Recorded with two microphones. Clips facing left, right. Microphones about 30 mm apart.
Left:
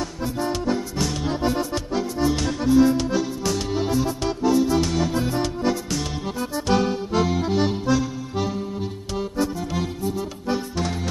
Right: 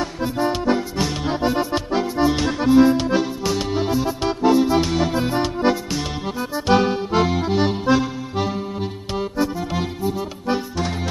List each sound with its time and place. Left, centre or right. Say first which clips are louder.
0.2 s accordion: right 4 dB; right